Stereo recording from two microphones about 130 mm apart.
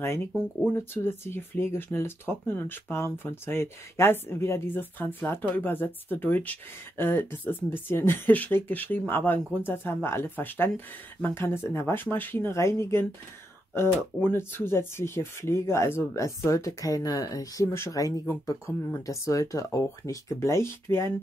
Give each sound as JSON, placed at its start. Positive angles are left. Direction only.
{"t": 1.0, "sound": "speech", "side_deg": 20}